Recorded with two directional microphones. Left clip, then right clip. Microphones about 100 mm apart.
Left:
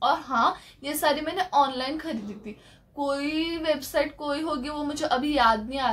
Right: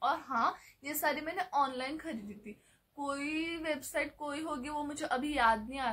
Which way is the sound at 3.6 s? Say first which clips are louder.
Left 10 dB; 15° left (ahead or behind).